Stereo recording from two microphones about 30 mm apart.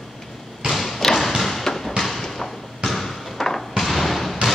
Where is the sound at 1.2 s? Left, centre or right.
Centre.